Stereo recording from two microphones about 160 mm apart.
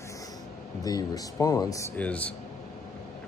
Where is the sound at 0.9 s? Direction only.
25° left (ahead or behind).